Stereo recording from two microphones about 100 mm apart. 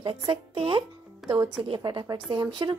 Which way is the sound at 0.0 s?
60° right (ahead or behind).